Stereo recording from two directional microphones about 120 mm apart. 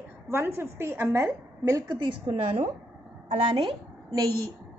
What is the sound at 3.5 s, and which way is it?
Speech, 35° right (ahead or behind).